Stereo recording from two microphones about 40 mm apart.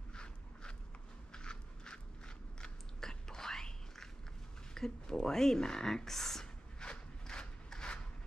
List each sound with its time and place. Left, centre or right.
0.1 s walk: left
1.3 s biting: left
4.7 s speech: centre
6.4 s a sound: left